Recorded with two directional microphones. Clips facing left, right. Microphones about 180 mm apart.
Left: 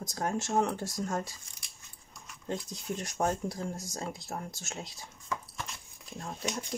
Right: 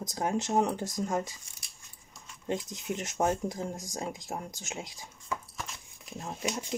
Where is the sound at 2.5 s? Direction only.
15° right (ahead or behind).